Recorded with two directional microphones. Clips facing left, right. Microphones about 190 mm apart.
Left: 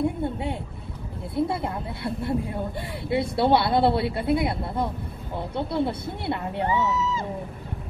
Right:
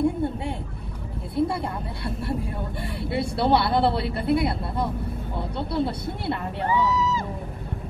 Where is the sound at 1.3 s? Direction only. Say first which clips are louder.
Right 1 dB; 20° left (ahead or behind).